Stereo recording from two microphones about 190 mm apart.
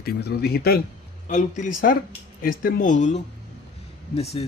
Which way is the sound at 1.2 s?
40° left (ahead or behind).